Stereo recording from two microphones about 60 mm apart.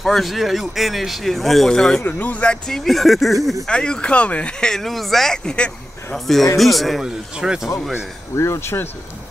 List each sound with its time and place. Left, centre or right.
0.0 s speech: centre
2.0 s speech: left
2.7 s speech: centre
3.6 s speech: centre
7.0 s speech: centre
8.4 s speech: left